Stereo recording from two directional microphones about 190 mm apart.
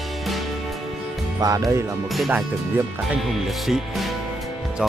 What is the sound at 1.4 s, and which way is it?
Speech, 20° right (ahead or behind).